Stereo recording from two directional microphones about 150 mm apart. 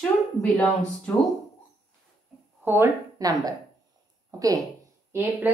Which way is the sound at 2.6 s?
15° right (ahead or behind).